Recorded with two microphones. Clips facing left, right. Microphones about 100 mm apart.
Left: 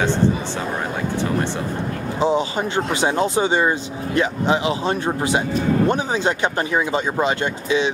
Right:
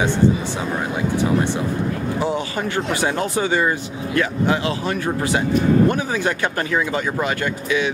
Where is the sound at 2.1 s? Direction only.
20° left (ahead or behind).